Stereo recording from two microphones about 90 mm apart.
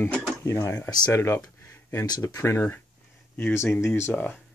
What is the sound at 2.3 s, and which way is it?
Speech, 30° left (ahead or behind).